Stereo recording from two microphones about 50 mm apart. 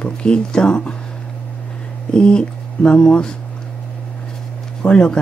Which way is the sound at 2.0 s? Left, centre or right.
Centre.